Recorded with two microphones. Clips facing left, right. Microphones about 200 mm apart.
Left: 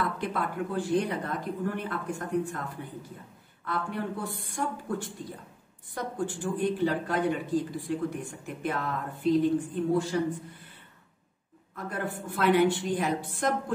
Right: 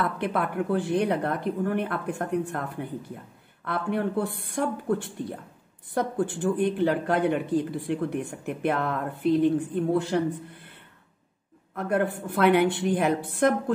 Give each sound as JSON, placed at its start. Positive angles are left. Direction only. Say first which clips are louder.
{"t": 0.0, "sound": "speech", "louder": "right 4 dB", "side_deg": -60}
{"t": 11.7, "sound": "speech", "louder": "right 8 dB", "side_deg": -60}